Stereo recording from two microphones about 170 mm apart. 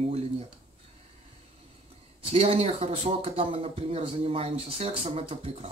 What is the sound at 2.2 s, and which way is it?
Speech, 35° right (ahead or behind).